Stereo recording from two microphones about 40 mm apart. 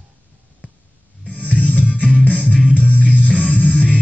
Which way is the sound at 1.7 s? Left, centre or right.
Right.